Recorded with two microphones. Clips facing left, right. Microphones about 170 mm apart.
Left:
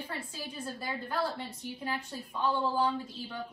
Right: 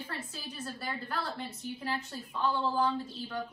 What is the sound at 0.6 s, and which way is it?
A woman's voice, 10° left (ahead or behind).